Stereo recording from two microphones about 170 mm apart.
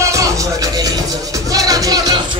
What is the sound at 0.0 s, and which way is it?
Music, 20° right (ahead or behind).